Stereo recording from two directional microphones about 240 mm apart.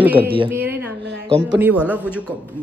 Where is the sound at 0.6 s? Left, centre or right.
Right.